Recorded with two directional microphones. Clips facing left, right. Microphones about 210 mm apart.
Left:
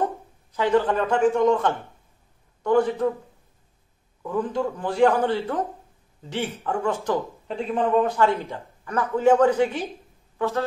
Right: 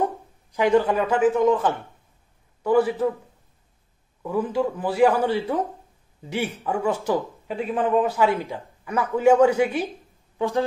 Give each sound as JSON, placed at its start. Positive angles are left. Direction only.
{"t": 0.0, "sound": "a man's voice", "side_deg": -15}
{"t": 4.2, "sound": "a woman's voice", "side_deg": -10}